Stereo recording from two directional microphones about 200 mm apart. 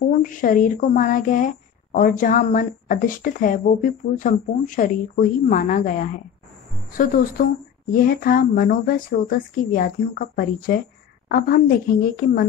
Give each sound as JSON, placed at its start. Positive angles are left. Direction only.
{"t": 0.2, "sound": "a woman's voice", "side_deg": 40}